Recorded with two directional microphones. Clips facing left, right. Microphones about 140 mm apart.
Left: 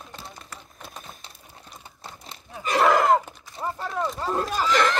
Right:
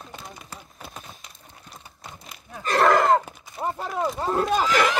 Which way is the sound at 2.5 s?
5° left (ahead or behind).